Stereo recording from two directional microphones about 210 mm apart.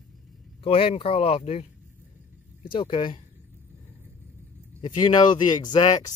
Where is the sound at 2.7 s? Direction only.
25° left (ahead or behind).